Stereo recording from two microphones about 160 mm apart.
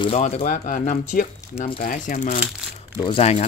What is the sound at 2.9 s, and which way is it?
Speech, 35° left (ahead or behind).